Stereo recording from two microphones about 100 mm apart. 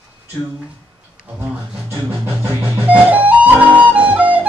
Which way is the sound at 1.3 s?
10° right (ahead or behind).